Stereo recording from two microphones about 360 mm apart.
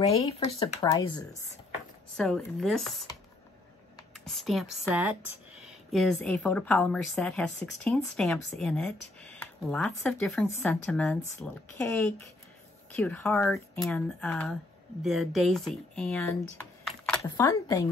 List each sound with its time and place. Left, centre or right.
0.0 s speech: centre
2.1 s speech: centre
4.2 s speech: centre